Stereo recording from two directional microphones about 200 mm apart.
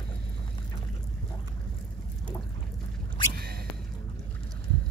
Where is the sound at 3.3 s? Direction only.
50° right (ahead or behind).